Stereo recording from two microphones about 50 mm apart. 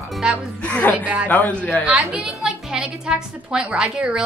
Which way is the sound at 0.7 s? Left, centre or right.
Left.